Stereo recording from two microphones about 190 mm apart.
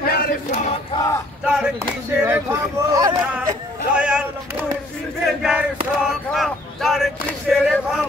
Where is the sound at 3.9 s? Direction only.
5° right (ahead or behind).